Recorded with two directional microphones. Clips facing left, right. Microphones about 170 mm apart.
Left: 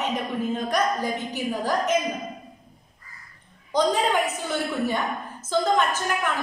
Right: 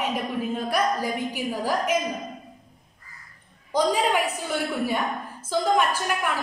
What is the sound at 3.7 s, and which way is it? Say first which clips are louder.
Speech: even; 10° right (ahead or behind).